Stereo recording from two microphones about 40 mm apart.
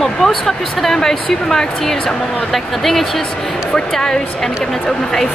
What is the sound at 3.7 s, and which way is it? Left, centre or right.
Speech, centre.